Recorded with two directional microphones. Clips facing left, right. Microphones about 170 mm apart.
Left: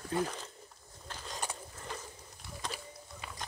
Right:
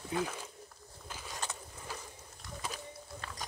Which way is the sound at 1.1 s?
10° right (ahead or behind).